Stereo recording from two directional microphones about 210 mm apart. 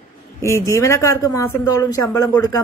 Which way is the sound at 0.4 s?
15° left (ahead or behind).